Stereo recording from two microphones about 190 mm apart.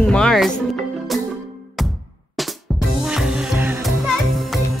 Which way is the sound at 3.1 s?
5° right (ahead or behind).